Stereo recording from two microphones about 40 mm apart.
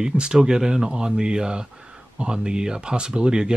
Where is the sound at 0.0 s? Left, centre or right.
Right.